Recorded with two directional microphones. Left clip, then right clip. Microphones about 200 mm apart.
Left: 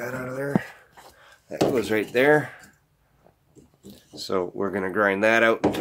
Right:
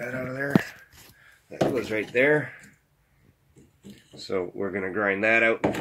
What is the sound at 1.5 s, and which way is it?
Speech, 30° left (ahead or behind).